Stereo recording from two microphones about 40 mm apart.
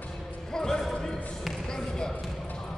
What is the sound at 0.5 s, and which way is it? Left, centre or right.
Basketball bounce, centre.